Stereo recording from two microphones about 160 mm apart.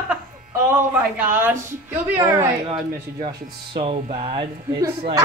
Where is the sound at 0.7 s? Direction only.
10° right (ahead or behind).